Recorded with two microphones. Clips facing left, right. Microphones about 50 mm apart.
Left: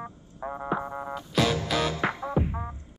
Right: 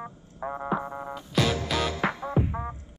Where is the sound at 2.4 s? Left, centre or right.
Centre.